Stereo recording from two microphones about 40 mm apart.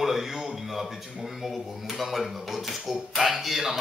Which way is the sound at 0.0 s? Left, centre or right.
Centre.